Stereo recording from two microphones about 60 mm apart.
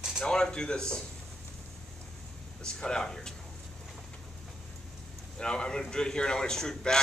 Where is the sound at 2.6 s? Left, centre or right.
Centre.